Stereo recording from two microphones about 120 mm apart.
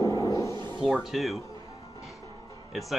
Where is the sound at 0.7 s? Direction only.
5° right (ahead or behind).